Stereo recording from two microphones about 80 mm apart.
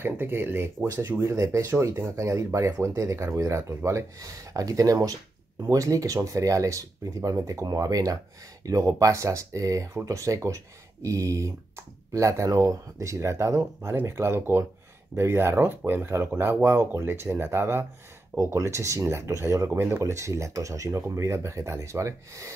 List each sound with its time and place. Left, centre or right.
0.0 s speech: right